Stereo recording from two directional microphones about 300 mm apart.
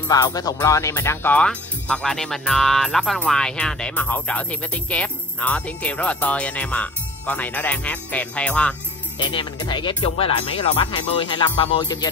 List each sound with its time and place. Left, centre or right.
0.1 s speech: centre
9.3 s speech: centre